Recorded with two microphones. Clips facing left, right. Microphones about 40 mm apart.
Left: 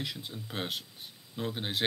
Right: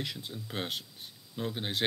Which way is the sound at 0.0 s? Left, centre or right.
Centre.